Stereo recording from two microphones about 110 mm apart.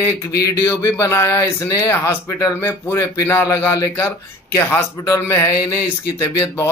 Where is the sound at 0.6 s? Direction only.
30° left (ahead or behind).